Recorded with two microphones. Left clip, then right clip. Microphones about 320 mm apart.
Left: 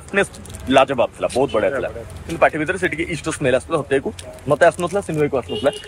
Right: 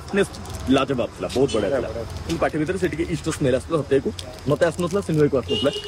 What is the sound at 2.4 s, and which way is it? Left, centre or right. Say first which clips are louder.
Speech: left 6 dB; centre.